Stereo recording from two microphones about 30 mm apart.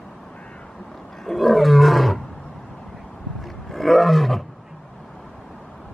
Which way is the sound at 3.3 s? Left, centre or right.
Centre.